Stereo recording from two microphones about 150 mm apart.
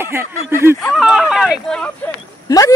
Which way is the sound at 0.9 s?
Centre (ahead or behind).